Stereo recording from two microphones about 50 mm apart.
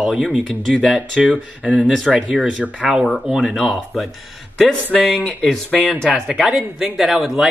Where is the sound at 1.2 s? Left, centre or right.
Right.